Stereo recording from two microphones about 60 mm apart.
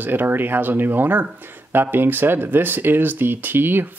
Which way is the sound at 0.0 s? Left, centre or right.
Right.